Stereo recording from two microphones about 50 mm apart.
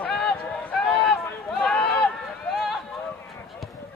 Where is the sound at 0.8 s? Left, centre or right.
Centre.